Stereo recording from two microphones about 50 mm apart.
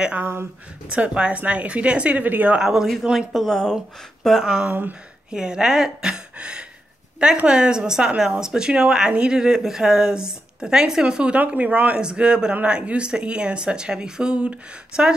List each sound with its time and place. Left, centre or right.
0.2 s speech: right
0.8 s speech: centre
2.5 s speech: centre
3.3 s speech: centre
4.6 s speech: right
5.3 s speech: centre
11.3 s speech: right
12.0 s speech: centre